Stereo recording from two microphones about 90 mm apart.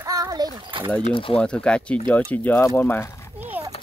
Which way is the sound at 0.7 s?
70° right (ahead or behind).